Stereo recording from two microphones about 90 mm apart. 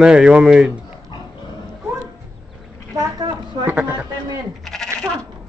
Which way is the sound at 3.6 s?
15° right (ahead or behind).